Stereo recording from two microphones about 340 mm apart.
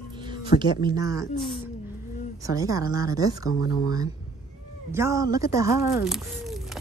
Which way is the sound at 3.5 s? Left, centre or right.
Left.